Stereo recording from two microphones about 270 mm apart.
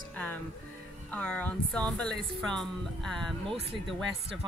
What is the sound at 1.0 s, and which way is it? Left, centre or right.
Speech, centre.